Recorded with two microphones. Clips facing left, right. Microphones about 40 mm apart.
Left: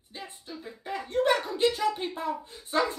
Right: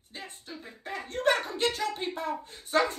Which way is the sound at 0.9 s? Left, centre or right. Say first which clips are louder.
Left 2 dB; right.